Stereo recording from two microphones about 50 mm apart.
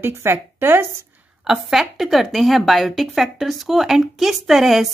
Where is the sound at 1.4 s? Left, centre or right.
Centre.